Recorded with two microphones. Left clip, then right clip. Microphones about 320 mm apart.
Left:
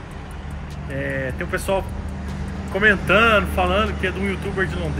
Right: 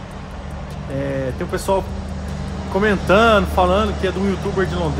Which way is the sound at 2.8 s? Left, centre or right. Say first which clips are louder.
Right 1 dB; centre.